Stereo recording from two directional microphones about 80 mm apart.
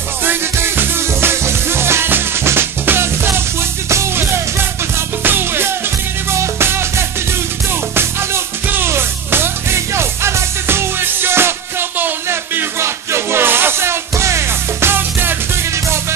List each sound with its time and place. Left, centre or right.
0.2 s music: right